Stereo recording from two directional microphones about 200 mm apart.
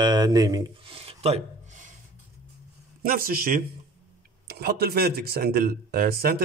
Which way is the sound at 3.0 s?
45° right (ahead or behind).